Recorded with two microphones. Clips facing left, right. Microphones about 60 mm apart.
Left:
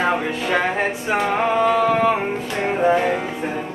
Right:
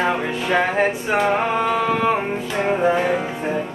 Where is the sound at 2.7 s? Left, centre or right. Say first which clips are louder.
Left 1 dB; centre.